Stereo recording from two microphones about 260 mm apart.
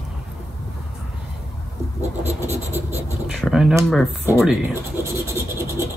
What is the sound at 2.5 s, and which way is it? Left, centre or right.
Writing, right.